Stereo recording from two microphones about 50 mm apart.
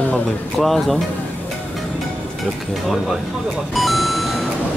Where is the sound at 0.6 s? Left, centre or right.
Centre.